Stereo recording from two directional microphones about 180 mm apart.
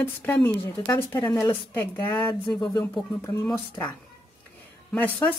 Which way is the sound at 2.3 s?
25° left (ahead or behind).